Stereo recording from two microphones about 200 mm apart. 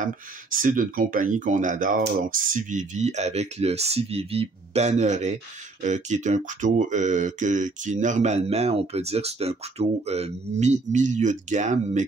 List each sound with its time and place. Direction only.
0.0 s speech: 40° right (ahead or behind)